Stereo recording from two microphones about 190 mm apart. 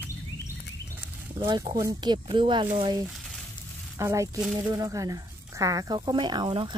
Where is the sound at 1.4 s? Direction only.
20° right (ahead or behind).